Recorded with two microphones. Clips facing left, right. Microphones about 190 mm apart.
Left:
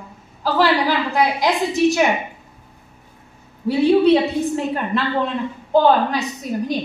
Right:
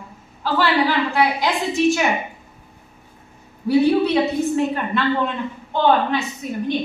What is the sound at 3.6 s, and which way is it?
Speech, 30° left (ahead or behind).